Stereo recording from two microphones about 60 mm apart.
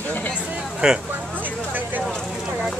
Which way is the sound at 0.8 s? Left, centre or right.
Centre.